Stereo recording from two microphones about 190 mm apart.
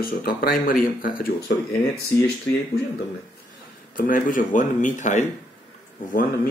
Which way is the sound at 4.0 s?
45° left (ahead or behind).